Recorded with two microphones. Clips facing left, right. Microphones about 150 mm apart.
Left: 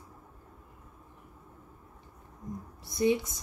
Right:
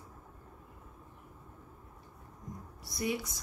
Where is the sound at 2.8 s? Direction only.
25° left (ahead or behind).